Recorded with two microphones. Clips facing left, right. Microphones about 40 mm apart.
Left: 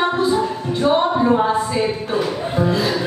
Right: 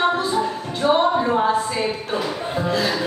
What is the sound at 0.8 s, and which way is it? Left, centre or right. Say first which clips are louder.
Singing: left 1 dB; centre.